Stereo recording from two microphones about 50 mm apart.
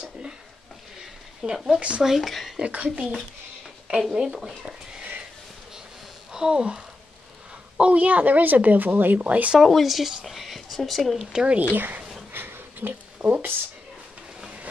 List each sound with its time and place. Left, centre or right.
1.4 s speech: centre
1.8 s speech: right
2.0 s speech: centre
2.6 s speech: right
4.1 s speech: centre
6.3 s speech: centre
9.6 s speech: centre
11.3 s speech: right
11.7 s speech: right
12.3 s a sound: right